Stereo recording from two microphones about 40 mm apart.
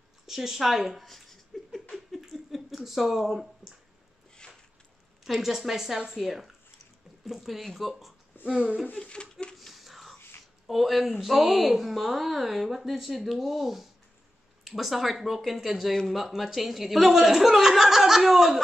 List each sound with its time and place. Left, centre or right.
0.3 s speech: centre
1.0 s laughter: centre
5.4 s a woman's voice: centre
8.5 s speech: right
9.0 s a sound: left
9.6 s whispering: centre
10.7 s a woman's voice: centre